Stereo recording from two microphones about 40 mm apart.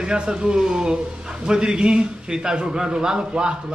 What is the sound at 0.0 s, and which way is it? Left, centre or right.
A man's voice, right.